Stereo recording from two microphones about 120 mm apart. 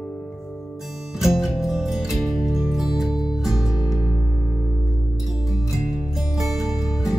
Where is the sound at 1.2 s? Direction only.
5° right (ahead or behind).